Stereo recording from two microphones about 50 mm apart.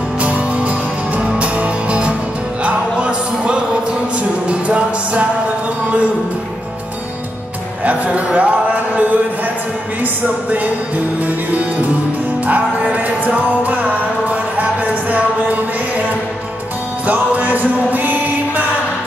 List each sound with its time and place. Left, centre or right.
0.2 s music: right
7.8 s a sound: right
11.2 s music: right
12.9 s music: right
17.0 s music: right